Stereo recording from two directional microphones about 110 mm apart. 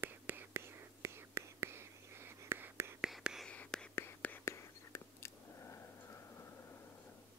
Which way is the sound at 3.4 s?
10° left (ahead or behind).